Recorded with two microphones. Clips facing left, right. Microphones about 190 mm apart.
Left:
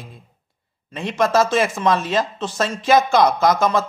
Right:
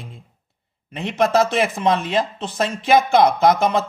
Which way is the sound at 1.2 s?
20° right (ahead or behind).